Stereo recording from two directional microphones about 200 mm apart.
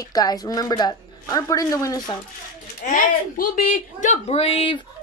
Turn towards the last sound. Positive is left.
turn(degrees=25)  # may be behind; listen again after turning